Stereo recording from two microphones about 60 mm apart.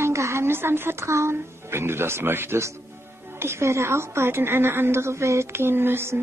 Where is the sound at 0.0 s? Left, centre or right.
Right.